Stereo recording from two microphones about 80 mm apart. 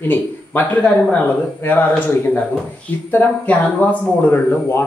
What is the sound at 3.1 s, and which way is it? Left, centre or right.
Speech, left.